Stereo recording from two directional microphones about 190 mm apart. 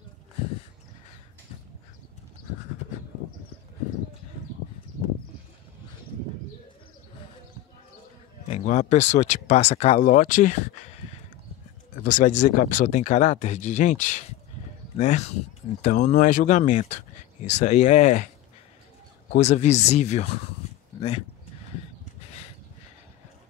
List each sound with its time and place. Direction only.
8.5 s speech: 35° left (ahead or behind)
12.0 s speech: 45° left (ahead or behind)
19.3 s speech: 35° left (ahead or behind)
22.2 s a sound: 35° left (ahead or behind)